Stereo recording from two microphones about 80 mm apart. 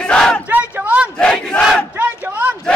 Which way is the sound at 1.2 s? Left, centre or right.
Centre.